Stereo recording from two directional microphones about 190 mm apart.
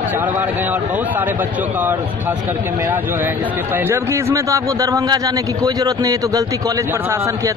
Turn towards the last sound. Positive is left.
turn(degrees=-20)  # may be behind; listen again after turning